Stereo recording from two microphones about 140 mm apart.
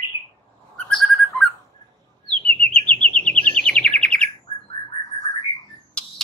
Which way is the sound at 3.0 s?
10° left (ahead or behind).